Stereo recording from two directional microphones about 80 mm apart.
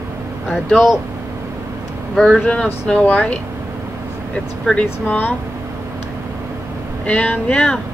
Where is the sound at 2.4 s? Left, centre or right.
Centre.